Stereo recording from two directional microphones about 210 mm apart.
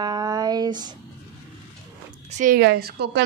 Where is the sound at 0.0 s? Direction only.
20° right (ahead or behind).